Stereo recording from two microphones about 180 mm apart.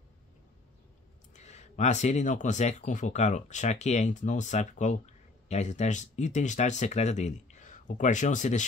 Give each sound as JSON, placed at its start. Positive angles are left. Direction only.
{"t": 1.3, "sound": "speech", "side_deg": 40}